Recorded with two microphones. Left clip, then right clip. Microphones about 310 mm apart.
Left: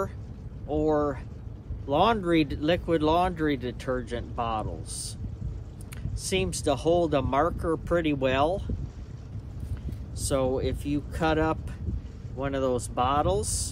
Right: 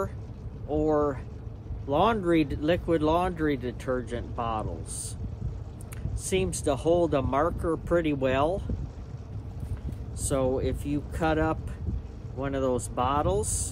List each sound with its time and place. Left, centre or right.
0.9 s speech: centre
6.2 s speech: centre
10.2 s speech: centre